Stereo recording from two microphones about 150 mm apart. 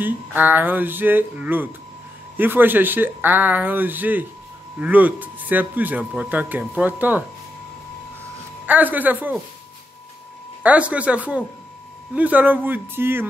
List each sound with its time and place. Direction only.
0.0 s speech: 10° right (ahead or behind)
8.6 s speech: 10° right (ahead or behind)
10.6 s speech: 10° right (ahead or behind)